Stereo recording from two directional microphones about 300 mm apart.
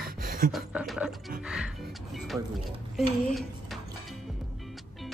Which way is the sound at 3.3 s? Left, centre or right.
Centre.